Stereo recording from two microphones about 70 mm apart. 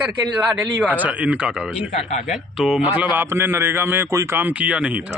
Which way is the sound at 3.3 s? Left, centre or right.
Right.